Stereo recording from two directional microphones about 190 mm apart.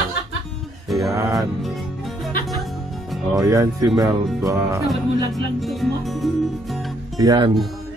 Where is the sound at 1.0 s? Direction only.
15° right (ahead or behind).